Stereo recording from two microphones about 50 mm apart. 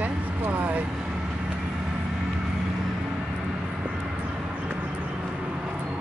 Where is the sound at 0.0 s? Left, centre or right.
Right.